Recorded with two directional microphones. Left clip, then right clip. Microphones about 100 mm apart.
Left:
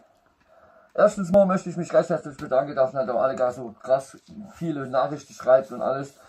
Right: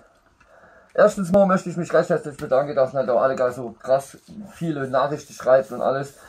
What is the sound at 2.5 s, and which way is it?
Speech, 20° right (ahead or behind).